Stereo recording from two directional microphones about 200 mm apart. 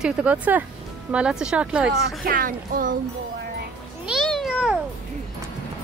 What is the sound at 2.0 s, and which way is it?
Speech, 45° right (ahead or behind).